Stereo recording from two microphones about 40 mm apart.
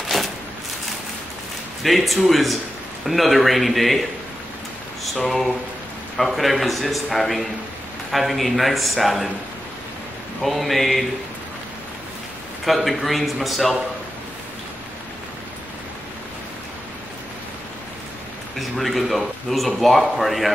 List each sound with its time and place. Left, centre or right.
0.0 s a sound: centre
1.8 s a man's voice: centre
6.1 s a man's voice: centre
10.4 s a man's voice: centre
12.6 s a man's voice: centre
18.6 s a man's voice: centre